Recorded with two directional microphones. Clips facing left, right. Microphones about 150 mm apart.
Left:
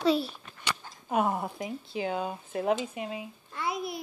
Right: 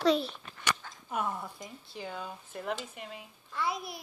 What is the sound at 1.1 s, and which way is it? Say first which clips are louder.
Speech: left 7 dB; 75° left (ahead or behind).